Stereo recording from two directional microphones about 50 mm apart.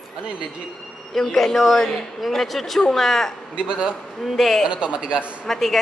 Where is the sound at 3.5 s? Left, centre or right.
Centre.